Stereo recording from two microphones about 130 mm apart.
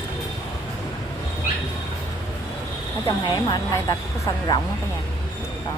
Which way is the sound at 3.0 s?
25° left (ahead or behind).